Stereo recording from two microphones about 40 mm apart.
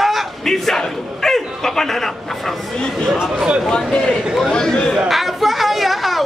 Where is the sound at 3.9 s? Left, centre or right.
Centre.